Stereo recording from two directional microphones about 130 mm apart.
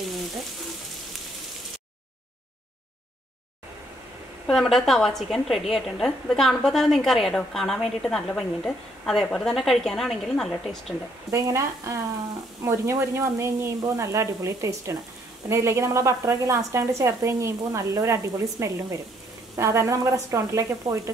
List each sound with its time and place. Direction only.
4.5 s a woman's voice: centre (ahead or behind)
11.2 s a woman's voice: 25° right (ahead or behind)